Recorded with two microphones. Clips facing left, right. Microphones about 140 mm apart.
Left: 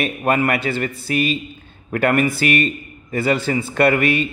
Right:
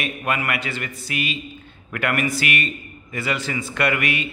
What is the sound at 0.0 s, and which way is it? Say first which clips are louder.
A man's voice: left 7 dB; 35° left (ahead or behind).